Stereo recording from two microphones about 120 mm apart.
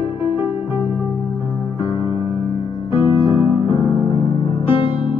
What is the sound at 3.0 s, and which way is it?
Music, 50° left (ahead or behind).